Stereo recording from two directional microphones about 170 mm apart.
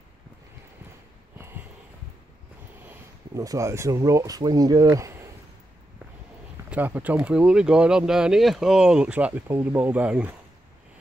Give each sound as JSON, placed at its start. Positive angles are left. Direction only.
{"t": 2.9, "sound": "speech", "side_deg": -20}
{"t": 6.7, "sound": "speech", "side_deg": -10}